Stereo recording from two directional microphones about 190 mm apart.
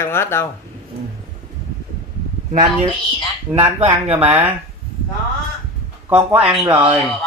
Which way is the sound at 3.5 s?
5° right (ahead or behind).